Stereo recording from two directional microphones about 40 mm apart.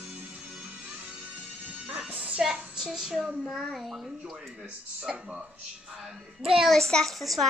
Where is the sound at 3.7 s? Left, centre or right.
Centre.